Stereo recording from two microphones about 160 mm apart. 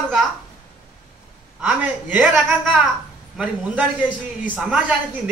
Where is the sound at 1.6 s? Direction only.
10° right (ahead or behind).